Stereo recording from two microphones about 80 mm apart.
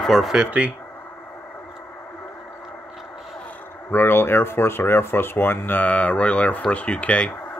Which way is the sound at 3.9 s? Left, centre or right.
Left.